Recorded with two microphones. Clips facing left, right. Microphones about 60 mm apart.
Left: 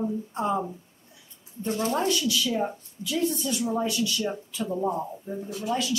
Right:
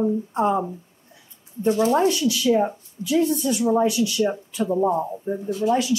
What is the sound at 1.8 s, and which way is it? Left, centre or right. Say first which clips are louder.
A woman's voice: right 6 dB; right.